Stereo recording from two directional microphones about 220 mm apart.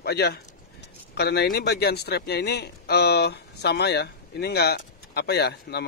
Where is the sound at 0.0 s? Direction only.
45° left (ahead or behind).